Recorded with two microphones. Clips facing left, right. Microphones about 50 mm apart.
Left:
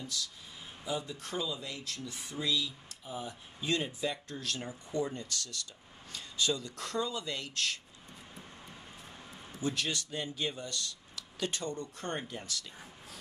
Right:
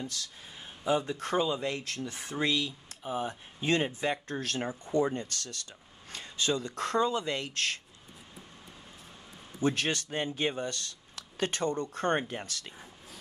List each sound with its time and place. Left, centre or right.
0.0 s speech: right
9.6 s speech: right